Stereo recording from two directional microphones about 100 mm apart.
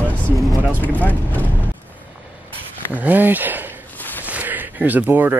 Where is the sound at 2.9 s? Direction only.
15° right (ahead or behind).